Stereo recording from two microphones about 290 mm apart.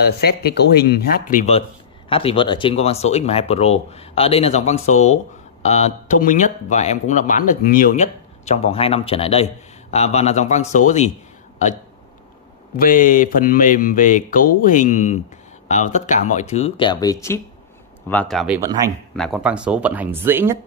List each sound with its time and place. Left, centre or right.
0.0 s speech: left
12.7 s speech: left; by 18.6 s centre
18.6 s speech: centre
19.1 s speech: centre